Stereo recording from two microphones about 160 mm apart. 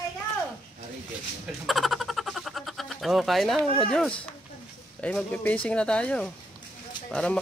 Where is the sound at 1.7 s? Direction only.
Centre (ahead or behind).